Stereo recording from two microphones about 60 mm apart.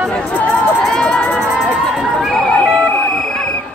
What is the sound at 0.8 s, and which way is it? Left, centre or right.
Run, centre.